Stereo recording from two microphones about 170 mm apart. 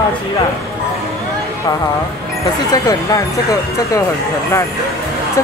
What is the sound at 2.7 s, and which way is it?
Speech, 20° left (ahead or behind).